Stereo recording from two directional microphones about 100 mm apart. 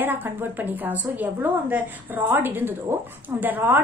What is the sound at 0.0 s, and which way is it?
A woman's voice, 20° right (ahead or behind).